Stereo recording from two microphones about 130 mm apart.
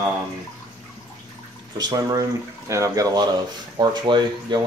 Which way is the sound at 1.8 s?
30° right (ahead or behind).